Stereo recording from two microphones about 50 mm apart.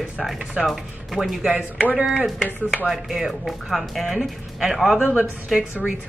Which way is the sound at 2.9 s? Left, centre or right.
Centre.